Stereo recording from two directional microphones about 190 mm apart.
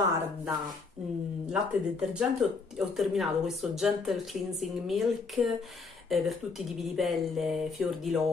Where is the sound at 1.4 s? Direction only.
5° right (ahead or behind).